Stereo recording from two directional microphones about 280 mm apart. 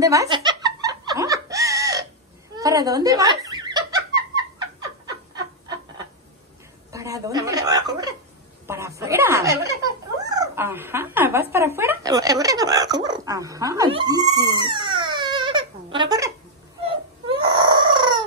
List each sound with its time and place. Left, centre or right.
0.0 s music: centre
2.5 s giggle: centre
6.9 s hiccup: centre
8.6 s chuckle: centre
10.4 s a sound: centre